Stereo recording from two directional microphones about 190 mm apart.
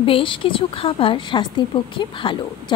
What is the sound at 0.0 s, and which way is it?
A woman's voice, 25° left (ahead or behind).